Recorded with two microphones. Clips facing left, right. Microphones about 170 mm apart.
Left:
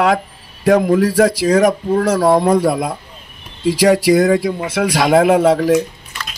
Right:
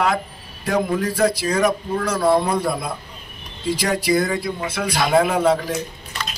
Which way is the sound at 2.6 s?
90° left.